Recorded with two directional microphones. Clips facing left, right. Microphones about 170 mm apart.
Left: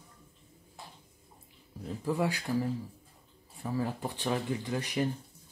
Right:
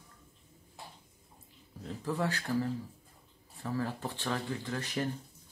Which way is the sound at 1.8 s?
15° left (ahead or behind).